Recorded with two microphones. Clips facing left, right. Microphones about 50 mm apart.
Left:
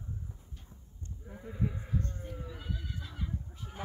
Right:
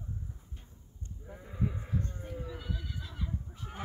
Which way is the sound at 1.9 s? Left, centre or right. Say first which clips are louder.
Even; centre.